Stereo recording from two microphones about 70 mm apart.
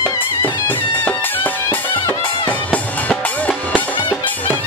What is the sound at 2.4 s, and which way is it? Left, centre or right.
Music, left.